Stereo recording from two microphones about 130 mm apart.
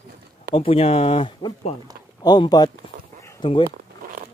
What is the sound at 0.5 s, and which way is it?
Speech, 50° left (ahead or behind).